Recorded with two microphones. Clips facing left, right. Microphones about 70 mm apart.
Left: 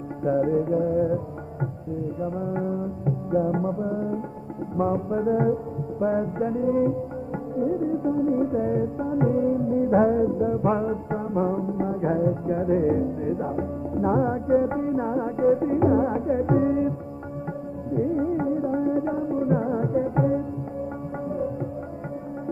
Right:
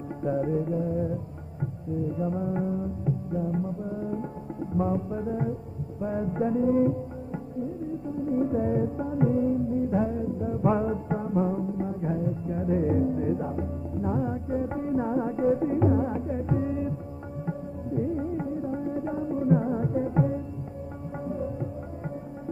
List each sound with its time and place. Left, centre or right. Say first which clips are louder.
0.2 s music: left 5 dB; left
2.1 s music: left 3 dB; centre
3.3 s music: left 10 dB; left
3.9 s music: left 4 dB; left
6.2 s music: left 1 dB; centre
7.6 s music: left 12 dB; left
8.3 s music: left 3 dB; centre; by 10.3 s left
10.6 s music: left 2 dB; centre; by 11.9 s left
11.9 s music: left 6 dB; left
12.6 s music: left 2 dB; left
14.0 s music: left 7 dB; left
14.7 s music: left 3 dB; centre